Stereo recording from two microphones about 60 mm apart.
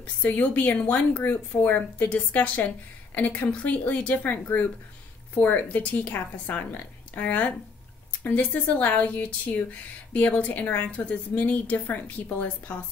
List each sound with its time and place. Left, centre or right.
0.0 s speech: left